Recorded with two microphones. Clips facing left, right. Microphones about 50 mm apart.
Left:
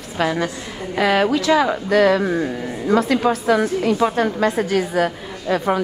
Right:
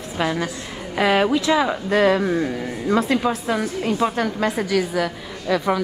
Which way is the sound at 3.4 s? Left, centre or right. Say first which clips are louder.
Left 5 dB; left.